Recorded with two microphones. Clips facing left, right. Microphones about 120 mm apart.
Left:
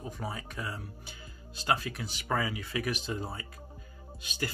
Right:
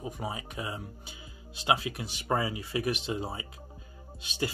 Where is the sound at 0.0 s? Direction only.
15° right (ahead or behind).